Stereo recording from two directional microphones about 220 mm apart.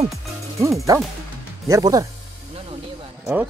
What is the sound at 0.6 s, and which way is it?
A man's voice, 15° right (ahead or behind).